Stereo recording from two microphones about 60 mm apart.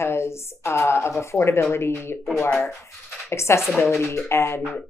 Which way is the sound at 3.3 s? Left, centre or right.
Left.